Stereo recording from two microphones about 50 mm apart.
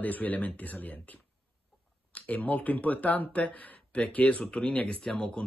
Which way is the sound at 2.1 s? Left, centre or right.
Left.